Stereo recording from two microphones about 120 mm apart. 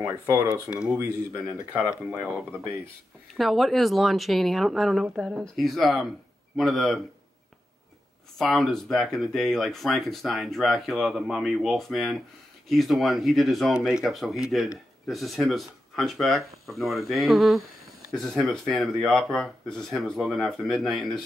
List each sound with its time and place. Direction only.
0.0 s speech: 25° right (ahead or behind)
1.9 s speech: 10° right (ahead or behind)
8.4 s speech: centre (ahead or behind)